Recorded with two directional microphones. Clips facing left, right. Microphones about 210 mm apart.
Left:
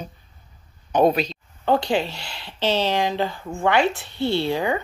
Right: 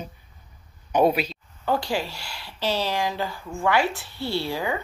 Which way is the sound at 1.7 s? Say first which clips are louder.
Left 5 dB; 20° left (ahead or behind).